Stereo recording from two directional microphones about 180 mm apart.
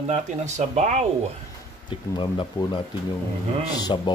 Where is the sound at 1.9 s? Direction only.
25° left (ahead or behind).